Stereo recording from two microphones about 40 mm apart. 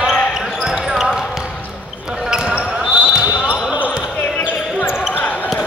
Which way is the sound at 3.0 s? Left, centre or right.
Right.